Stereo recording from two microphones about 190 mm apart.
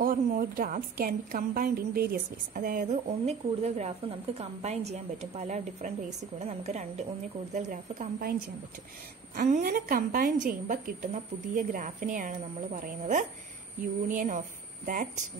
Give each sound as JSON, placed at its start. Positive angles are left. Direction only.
{"t": 0.0, "sound": "a woman's voice", "side_deg": -45}